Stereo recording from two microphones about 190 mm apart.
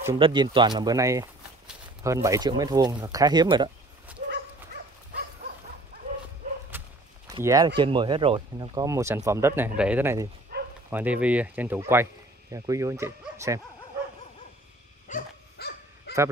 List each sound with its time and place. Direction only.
0.2 s speech: 25° right (ahead or behind)
7.2 s speech: 20° right (ahead or behind)
10.5 s bow-wow: 55° right (ahead or behind)
10.9 s speech: 10° right (ahead or behind)
15.1 s dog: 40° left (ahead or behind)
15.5 s dog: 55° left (ahead or behind)